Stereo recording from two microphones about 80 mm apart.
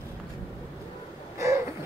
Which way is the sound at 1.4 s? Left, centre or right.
Right.